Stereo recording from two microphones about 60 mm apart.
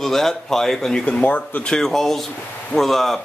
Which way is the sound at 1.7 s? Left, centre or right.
Centre.